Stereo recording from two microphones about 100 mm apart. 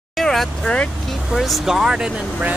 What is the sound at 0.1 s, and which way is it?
Speech, centre (ahead or behind).